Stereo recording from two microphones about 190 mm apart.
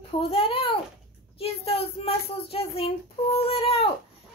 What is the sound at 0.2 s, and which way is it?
Speech, 30° left (ahead or behind).